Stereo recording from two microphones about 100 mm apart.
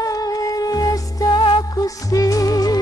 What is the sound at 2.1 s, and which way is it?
Music, 35° left (ahead or behind).